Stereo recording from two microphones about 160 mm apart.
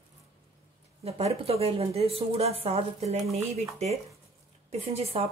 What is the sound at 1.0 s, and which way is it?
Speech, 40° right (ahead or behind).